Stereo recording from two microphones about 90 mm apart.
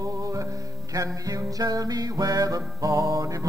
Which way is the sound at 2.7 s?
40° right (ahead or behind).